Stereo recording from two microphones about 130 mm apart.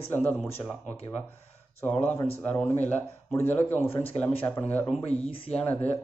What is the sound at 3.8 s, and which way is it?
Speech, 45° left (ahead or behind).